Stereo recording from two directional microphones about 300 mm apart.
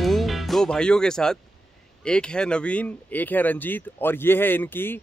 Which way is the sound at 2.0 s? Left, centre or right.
Centre.